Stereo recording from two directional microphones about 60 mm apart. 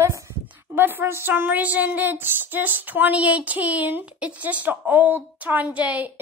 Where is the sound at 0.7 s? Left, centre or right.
Right.